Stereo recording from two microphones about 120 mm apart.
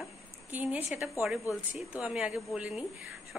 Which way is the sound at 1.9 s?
10° right (ahead or behind).